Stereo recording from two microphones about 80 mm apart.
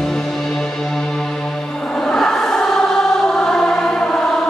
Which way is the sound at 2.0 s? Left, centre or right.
Centre.